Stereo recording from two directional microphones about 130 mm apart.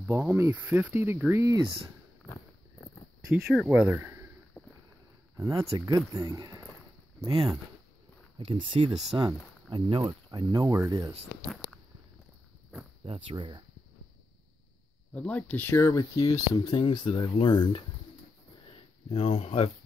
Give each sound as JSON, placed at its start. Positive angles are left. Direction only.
{"t": 0.1, "sound": "speech", "side_deg": -15}
{"t": 3.3, "sound": "speech", "side_deg": 0}
{"t": 4.6, "sound": "boat", "side_deg": 25}
{"t": 5.6, "sound": "speech", "side_deg": -25}
{"t": 7.2, "sound": "speech", "side_deg": -45}
{"t": 9.1, "sound": "speech", "side_deg": -30}
{"t": 9.8, "sound": "speech", "side_deg": -40}
{"t": 13.0, "sound": "speech", "side_deg": -40}
{"t": 15.1, "sound": "speech", "side_deg": 10}
{"t": 18.7, "sound": "a sound", "side_deg": 50}